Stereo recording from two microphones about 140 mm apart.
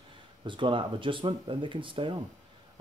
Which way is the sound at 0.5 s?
35° right (ahead or behind).